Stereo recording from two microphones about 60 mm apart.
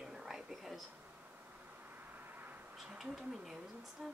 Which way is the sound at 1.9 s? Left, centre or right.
Right.